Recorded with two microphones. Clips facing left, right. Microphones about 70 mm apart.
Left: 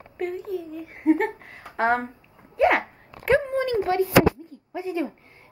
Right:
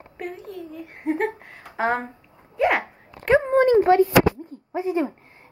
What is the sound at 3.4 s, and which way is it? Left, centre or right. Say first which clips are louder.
A woman's voice: right 8 dB; right.